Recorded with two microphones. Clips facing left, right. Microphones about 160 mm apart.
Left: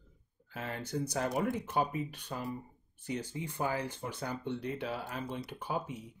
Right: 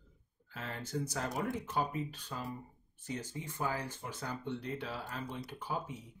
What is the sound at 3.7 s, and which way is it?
Speech, 65° left (ahead or behind).